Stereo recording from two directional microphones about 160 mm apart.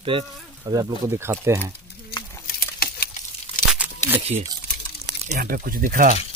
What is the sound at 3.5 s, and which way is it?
Tearing, 55° left (ahead or behind).